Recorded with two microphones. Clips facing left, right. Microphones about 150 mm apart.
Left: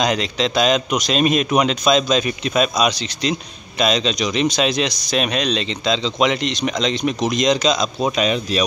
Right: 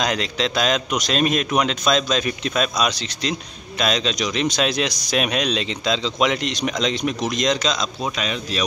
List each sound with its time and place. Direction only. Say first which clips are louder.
0.0 s a man's voice: left 3 dB; centre (ahead or behind)
8.0 s speech: left 7 dB; 20° left (ahead or behind)